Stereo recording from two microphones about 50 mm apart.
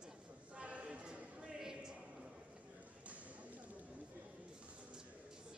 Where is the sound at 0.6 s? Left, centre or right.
Right.